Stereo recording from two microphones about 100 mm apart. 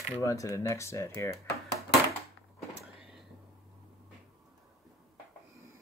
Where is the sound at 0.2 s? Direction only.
35° left (ahead or behind).